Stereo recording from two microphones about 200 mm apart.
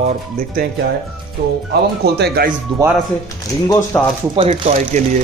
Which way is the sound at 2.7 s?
25° right (ahead or behind).